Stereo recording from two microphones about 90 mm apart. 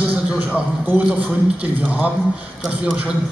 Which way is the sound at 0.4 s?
20° right (ahead or behind).